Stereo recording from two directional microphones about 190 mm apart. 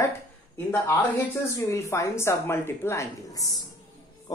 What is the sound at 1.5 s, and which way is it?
A woman's voice, 15° left (ahead or behind).